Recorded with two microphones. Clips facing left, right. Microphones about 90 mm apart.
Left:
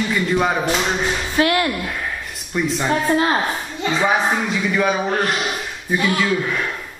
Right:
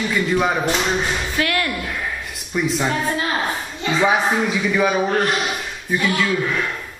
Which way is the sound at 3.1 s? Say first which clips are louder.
Left 5 dB; 35° left (ahead or behind).